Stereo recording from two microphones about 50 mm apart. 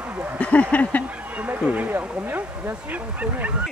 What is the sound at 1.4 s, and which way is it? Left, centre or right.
Speech, right.